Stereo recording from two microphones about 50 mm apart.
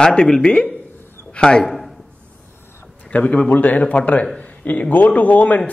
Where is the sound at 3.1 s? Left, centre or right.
Left.